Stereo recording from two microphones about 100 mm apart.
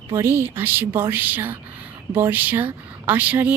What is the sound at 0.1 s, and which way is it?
A woman's voice, 25° right (ahead or behind).